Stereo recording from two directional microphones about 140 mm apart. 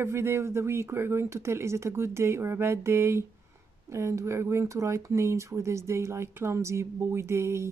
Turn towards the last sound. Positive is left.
turn(degrees=-20)  # may be behind; listen again after turning